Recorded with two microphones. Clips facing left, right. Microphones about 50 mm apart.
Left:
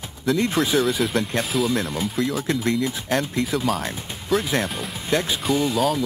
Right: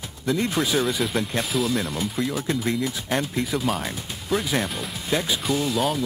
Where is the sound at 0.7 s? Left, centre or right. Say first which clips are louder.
Left 3 dB; centre.